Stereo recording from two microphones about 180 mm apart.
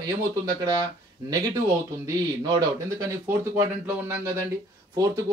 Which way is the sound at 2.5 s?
20° right (ahead or behind).